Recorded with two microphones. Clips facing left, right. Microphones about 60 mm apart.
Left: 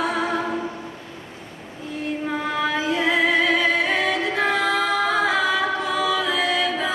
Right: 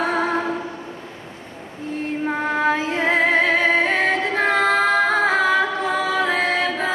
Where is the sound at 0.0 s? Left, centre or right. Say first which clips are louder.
Right 2 dB; right.